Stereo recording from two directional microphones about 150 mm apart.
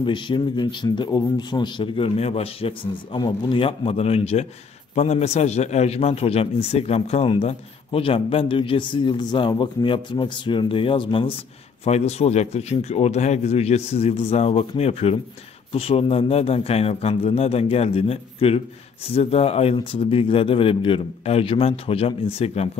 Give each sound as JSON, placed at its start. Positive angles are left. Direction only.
{"t": 0.0, "sound": "a man's voice", "side_deg": 30}
{"t": 11.8, "sound": "a man's voice", "side_deg": 45}